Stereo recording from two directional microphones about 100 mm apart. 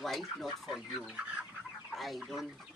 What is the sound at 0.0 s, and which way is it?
Speech, centre (ahead or behind).